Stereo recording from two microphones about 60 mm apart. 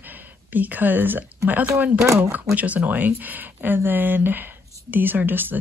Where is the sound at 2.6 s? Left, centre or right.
Right.